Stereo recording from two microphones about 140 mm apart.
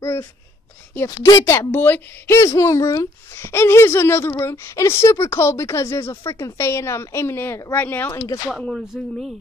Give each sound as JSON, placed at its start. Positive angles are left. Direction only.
{"t": 0.0, "sound": "speech", "side_deg": 25}
{"t": 8.5, "sound": "speech", "side_deg": 0}